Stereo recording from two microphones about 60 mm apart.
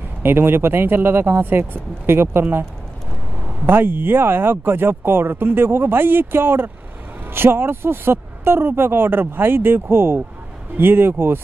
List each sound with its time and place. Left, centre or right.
0.2 s speech: right
3.6 s speech: right